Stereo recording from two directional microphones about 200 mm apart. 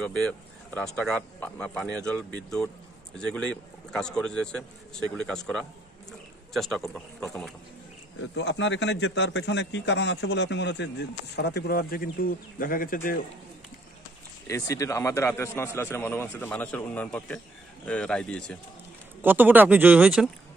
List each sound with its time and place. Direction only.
0.0 s speech: 5° left (ahead or behind)
8.4 s a man's voice: 65° left (ahead or behind); by 13.2 s 45° left (ahead or behind)
14.5 s a man's voice: 15° left (ahead or behind)
19.2 s speech: 10° right (ahead or behind)